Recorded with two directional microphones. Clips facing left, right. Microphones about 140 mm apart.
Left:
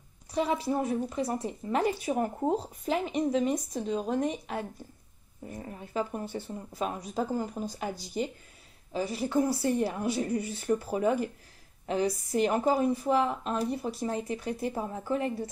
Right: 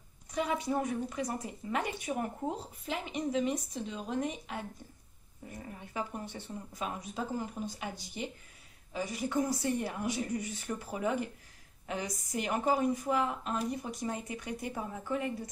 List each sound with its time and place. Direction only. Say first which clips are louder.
0.3 s a woman's voice: left 4 dB; 35° left (ahead or behind)
8.9 s a woman's voice: left 5 dB; 35° left (ahead or behind)